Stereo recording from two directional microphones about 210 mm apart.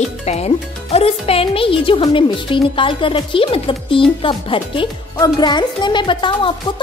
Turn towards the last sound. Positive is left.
turn(degrees=25)  # may be behind; listen again after turning